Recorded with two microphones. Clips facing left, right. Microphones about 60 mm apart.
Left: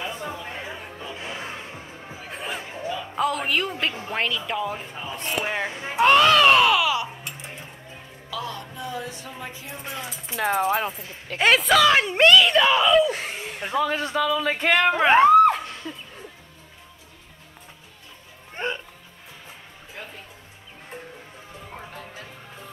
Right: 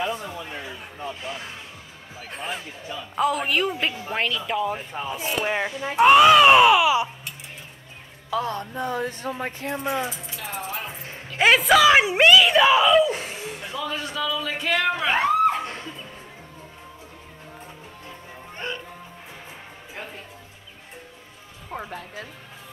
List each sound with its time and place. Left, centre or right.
1.1 s music: left
2.2 s a sound: centre
2.6 s a sound: left
3.2 s speech: centre
8.3 s speech: right
10.3 s speech: left
11.3 s speech: centre
13.2 s speech: left
18.6 s speech: left